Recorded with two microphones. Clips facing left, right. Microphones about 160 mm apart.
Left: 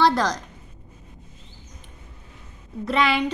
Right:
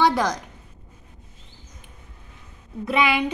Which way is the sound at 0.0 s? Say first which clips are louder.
Even; 15° right (ahead or behind).